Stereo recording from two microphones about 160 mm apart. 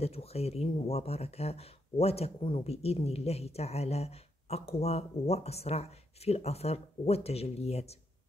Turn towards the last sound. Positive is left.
turn(degrees=40)  # may be behind; listen again after turning